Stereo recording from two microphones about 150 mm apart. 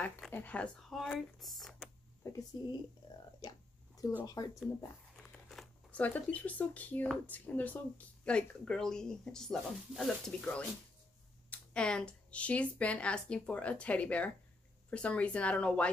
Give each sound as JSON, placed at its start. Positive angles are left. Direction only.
{"t": 0.0, "sound": "speech", "side_deg": 10}
{"t": 2.2, "sound": "speech", "side_deg": 20}
{"t": 3.3, "sound": "a sound", "side_deg": 25}
{"t": 4.2, "sound": "speech", "side_deg": 25}
{"t": 5.1, "sound": "a woman's voice", "side_deg": 0}